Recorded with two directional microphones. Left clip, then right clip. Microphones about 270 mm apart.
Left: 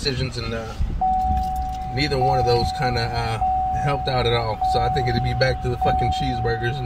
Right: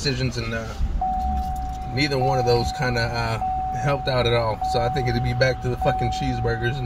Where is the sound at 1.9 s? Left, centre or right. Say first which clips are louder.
Left 1 dB; centre.